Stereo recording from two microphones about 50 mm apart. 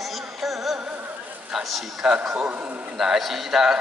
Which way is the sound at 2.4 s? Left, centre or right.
Right.